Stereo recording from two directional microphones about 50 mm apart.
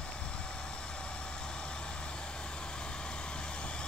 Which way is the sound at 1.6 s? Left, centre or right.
Centre.